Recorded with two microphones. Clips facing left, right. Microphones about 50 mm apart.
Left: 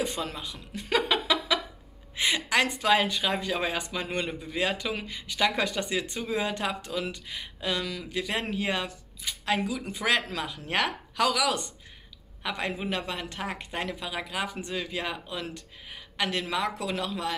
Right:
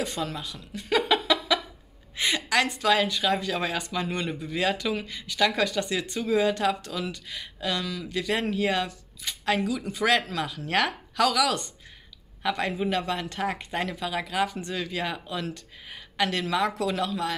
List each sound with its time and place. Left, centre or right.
0.0 s speech: left
0.7 s laughter: left
1.1 s a sound: centre
2.1 s speech: centre
4.3 s speech: centre
7.8 s speech: left
8.1 s speech: centre
9.9 s speech: centre